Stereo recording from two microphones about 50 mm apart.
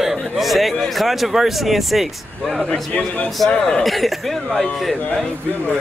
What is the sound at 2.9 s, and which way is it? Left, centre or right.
Speech, left.